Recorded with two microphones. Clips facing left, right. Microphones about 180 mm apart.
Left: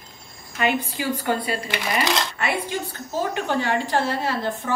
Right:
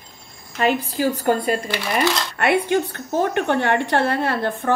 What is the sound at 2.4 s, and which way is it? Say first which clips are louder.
A woman's voice: right 7 dB; 60° right (ahead or behind).